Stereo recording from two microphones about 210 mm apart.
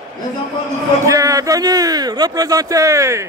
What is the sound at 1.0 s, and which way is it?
Speech, 15° right (ahead or behind).